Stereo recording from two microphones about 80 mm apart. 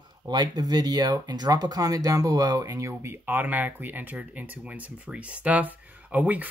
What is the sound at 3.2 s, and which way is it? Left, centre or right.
Speech, right.